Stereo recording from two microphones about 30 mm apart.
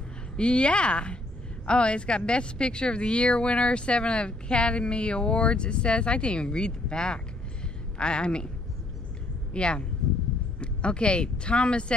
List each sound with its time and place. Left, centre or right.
0.4 s speech: left
9.5 s speech: left